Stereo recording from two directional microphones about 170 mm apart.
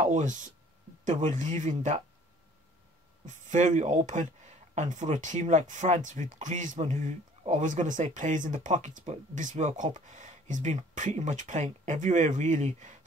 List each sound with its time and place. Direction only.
0.0 s speech: 45° right (ahead or behind)
3.3 s speech: 45° right (ahead or behind)